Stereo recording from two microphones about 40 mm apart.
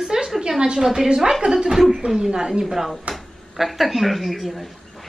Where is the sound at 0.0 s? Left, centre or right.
Centre.